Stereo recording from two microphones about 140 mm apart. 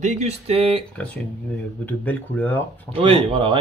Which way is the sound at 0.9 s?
10° left (ahead or behind).